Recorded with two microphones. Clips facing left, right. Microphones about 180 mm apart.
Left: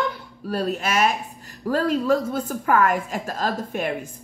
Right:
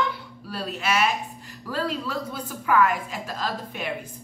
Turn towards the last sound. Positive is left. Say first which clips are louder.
# left 5 dB
turn(degrees=45)  # may be behind; listen again after turning